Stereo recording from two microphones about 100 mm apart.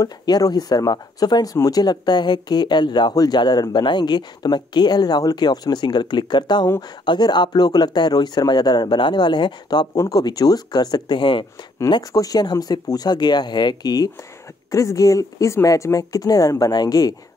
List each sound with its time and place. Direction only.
0.0 s speech: 40° left (ahead or behind); by 11.4 s 55° left (ahead or behind)
12.1 s speech: 40° left (ahead or behind)